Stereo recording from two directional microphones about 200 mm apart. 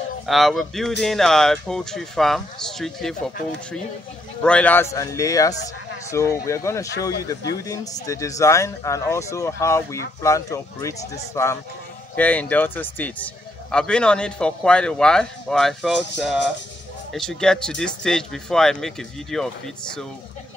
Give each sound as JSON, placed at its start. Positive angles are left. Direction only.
{"t": 0.3, "sound": "speech", "side_deg": 0}
{"t": 4.4, "sound": "speech", "side_deg": 5}